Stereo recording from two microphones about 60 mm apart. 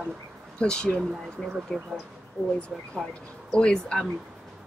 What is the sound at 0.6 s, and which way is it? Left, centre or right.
Speech, centre.